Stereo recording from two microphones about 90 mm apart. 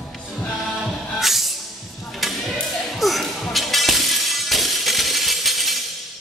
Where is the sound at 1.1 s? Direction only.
Centre (ahead or behind).